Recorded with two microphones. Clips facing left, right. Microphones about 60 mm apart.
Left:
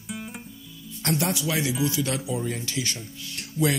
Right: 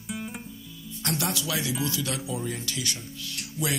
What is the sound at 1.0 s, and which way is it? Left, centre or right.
Speech, left.